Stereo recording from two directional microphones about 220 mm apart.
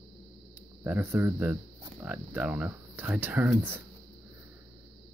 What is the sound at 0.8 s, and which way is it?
Speech, 10° right (ahead or behind).